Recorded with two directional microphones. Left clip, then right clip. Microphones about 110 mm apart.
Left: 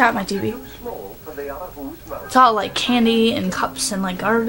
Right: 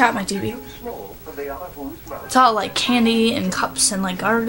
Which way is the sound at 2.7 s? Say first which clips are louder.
Even; 5° right (ahead or behind).